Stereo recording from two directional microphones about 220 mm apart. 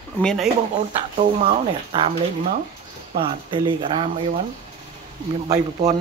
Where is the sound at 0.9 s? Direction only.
25° right (ahead or behind).